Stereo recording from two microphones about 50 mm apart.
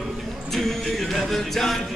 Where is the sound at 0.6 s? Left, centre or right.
Centre.